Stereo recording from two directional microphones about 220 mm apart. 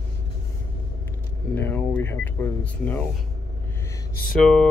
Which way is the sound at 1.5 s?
5° left (ahead or behind).